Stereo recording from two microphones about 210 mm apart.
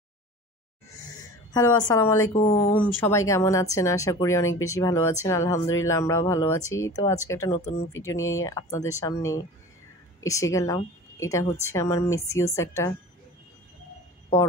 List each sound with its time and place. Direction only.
1.5 s speech: 20° left (ahead or behind)
3.0 s speech: 15° left (ahead or behind)